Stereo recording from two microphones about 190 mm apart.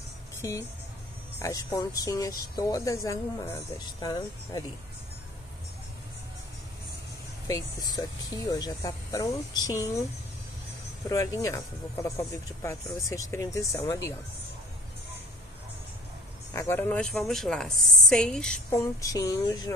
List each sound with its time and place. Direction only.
0.4 s speech: 15° left (ahead or behind)
7.4 s speech: 20° left (ahead or behind)
11.1 s speech: 15° left (ahead or behind)
16.5 s a woman's voice: 10° left (ahead or behind)
18.9 s speech: 15° left (ahead or behind)